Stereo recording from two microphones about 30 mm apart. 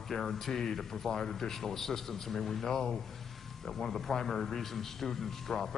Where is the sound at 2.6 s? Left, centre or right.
Centre.